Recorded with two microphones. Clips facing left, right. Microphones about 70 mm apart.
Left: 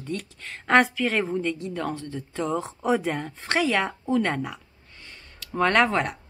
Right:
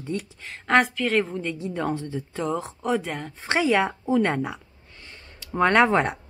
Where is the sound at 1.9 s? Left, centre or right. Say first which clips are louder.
Right 4 dB; centre.